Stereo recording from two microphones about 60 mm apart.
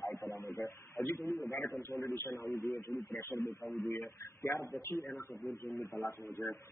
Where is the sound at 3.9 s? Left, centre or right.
Left.